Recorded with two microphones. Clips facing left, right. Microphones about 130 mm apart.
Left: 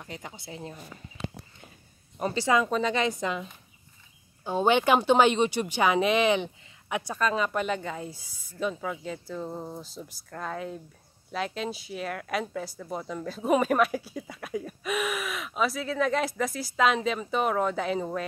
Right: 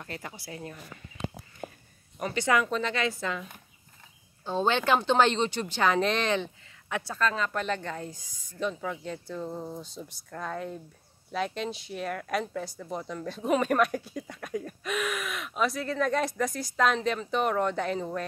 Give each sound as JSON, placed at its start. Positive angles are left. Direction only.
{"t": 0.0, "sound": "speech", "side_deg": 15}
{"t": 1.6, "sound": "a sound", "side_deg": -90}
{"t": 2.1, "sound": "speech", "side_deg": 30}
{"t": 4.5, "sound": "speech", "side_deg": 15}